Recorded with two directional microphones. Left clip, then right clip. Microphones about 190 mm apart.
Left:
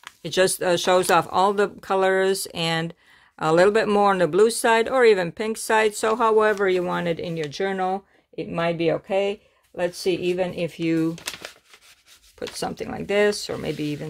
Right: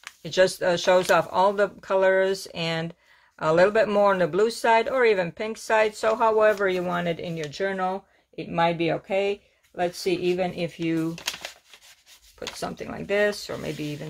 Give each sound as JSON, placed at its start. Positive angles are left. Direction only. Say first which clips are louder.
{"t": 0.2, "sound": "speech", "louder": "even", "side_deg": 55}
{"t": 11.2, "sound": "crumpling", "louder": "right 2 dB", "side_deg": 5}
{"t": 12.5, "sound": "speech", "louder": "left 4 dB", "side_deg": 50}